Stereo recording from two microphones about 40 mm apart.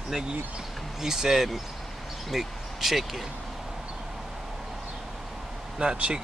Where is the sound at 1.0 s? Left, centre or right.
Centre.